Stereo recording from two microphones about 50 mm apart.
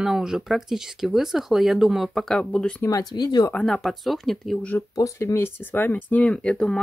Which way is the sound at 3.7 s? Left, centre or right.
Centre.